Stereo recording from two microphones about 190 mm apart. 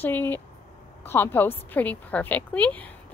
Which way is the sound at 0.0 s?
10° left (ahead or behind).